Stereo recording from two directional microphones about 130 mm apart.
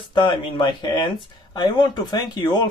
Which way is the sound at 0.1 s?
40° left (ahead or behind).